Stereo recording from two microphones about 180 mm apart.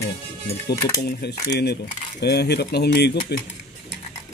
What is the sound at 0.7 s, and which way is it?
Speech, 65° left (ahead or behind).